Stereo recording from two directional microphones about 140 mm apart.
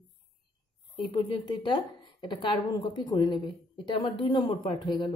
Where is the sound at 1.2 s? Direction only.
30° left (ahead or behind).